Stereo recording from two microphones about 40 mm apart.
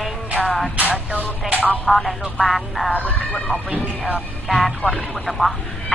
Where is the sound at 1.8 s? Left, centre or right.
Centre.